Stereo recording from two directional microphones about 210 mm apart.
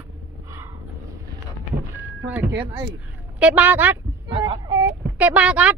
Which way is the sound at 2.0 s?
5° right (ahead or behind).